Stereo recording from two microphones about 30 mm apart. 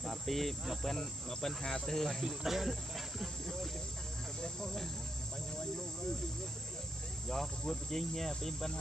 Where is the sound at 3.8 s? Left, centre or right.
Left.